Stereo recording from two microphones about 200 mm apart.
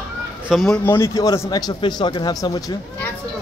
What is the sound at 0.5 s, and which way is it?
A man's voice, centre (ahead or behind).